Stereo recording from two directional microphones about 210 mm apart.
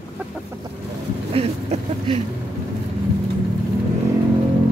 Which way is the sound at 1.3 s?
25° right (ahead or behind).